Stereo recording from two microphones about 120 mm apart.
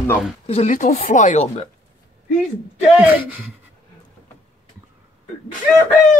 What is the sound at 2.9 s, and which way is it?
Speech, 15° right (ahead or behind).